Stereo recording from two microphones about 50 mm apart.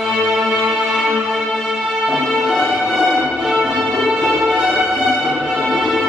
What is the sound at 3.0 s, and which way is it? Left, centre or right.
Music, right.